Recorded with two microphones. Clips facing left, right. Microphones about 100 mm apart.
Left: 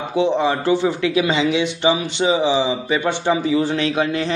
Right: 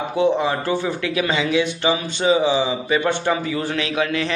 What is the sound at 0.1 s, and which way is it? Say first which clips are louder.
Speech: left 2 dB; 25° left (ahead or behind).